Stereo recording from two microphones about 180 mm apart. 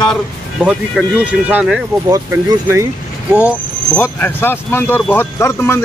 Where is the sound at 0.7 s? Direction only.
5° right (ahead or behind).